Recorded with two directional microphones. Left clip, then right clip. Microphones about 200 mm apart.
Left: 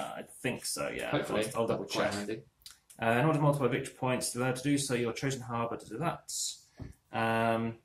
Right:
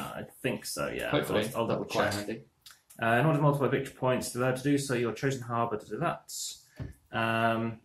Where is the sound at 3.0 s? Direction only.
50° left (ahead or behind).